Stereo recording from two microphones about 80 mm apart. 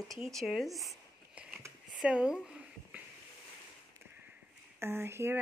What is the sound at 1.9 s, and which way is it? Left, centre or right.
Speech, centre.